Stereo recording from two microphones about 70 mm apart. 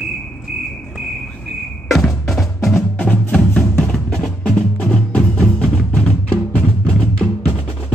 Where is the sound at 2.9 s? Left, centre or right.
Left.